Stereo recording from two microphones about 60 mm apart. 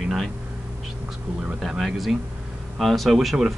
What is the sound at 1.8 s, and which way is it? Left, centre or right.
Speech, centre.